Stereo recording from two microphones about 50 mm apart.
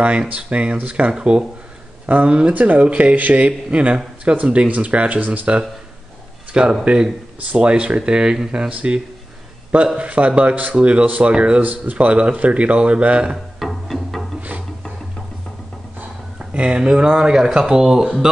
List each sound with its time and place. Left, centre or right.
0.3 s speech: right
6.5 s speech: centre
11.6 s speech: right
13.6 s music: centre
16.3 s speech: right